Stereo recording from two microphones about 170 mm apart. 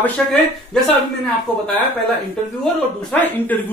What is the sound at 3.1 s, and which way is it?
Speech, 10° left (ahead or behind).